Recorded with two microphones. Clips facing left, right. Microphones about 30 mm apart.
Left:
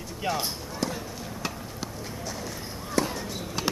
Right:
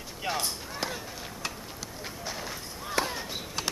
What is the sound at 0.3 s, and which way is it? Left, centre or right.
Speech, centre.